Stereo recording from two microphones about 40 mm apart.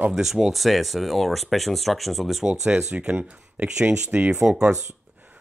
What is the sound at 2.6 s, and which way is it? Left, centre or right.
Speech, centre.